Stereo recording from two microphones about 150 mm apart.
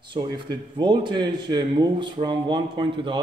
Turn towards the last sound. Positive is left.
turn(degrees=-30)  # may be behind; listen again after turning